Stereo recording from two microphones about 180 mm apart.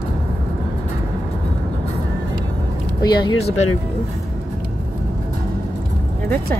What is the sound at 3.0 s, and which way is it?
Speech, 25° left (ahead or behind).